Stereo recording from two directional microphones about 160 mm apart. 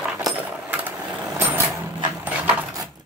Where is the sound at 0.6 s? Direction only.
10° right (ahead or behind).